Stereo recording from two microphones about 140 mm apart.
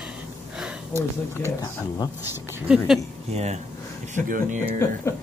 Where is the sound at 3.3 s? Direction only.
50° right (ahead or behind).